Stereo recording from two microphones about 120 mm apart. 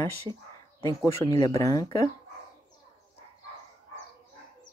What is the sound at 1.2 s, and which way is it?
Speech, 30° left (ahead or behind).